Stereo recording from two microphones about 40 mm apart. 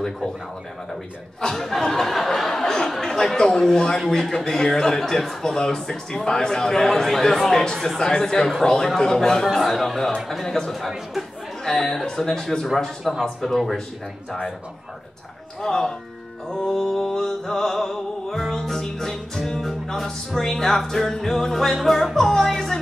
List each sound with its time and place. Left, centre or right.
1.4 s a sound: centre
4.1 s a man's voice: centre
11.6 s a man's voice: centre
15.6 s a man's voice: centre